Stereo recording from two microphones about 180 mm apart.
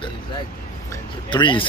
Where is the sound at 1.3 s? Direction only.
25° left (ahead or behind).